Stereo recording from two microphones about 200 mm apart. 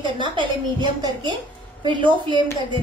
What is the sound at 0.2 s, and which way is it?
A woman's voice, 25° right (ahead or behind).